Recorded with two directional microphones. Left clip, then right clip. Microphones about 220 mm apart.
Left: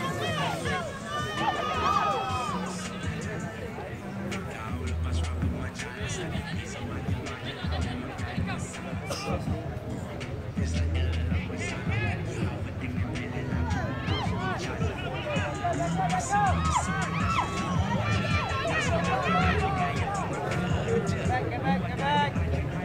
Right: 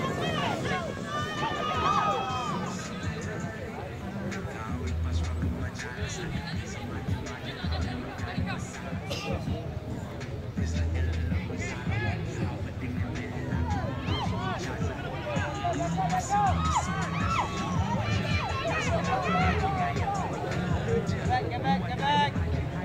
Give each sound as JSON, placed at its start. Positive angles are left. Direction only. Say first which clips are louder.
{"t": 0.0, "sound": "run", "louder": "even", "side_deg": 45}
{"t": 14.0, "sound": "music", "louder": "left 1 dB", "side_deg": 45}
{"t": 15.3, "sound": "a sound", "louder": "even", "side_deg": 30}
{"t": 15.9, "sound": "music", "louder": "left 1 dB", "side_deg": 30}
{"t": 16.3, "sound": "music", "louder": "even", "side_deg": 45}
{"t": 21.3, "sound": "a sound", "louder": "right 3 dB", "side_deg": -45}
{"t": 22.0, "sound": "music", "louder": "right 1 dB", "side_deg": -40}